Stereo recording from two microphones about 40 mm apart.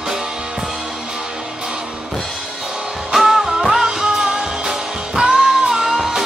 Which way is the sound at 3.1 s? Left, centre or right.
Centre.